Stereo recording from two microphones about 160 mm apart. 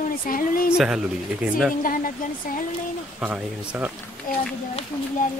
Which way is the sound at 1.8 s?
60° left (ahead or behind).